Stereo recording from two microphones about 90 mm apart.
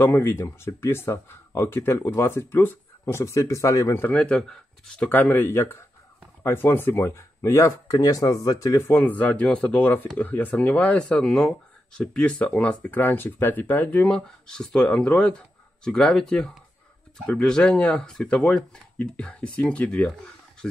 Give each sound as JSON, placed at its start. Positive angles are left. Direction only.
{"t": 0.0, "sound": "speech", "side_deg": 25}
{"t": 3.9, "sound": "speech", "side_deg": 25}
{"t": 4.2, "sound": "speech", "side_deg": 10}
{"t": 5.1, "sound": "speech", "side_deg": 20}
{"t": 14.0, "sound": "speech", "side_deg": 10}